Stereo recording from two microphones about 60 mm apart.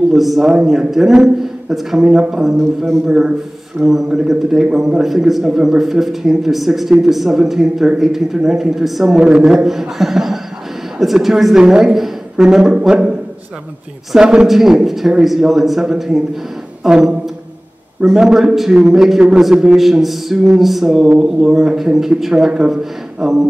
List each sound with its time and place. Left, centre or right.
0.1 s a man's voice: centre
9.2 s a man's voice: centre
9.7 s a man's voice: centre
14.1 s a man's voice: centre